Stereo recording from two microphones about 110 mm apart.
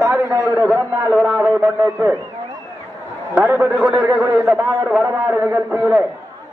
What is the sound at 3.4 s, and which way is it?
Speech, 25° right (ahead or behind).